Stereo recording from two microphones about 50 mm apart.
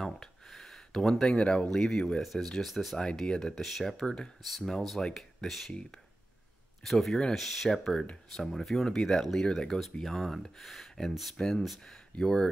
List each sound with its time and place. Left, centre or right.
0.0 s a sound: centre
1.2 s speech: centre
3.0 s speech: centre
3.5 s speech: centre
5.7 s speech: centre
6.8 s speech: centre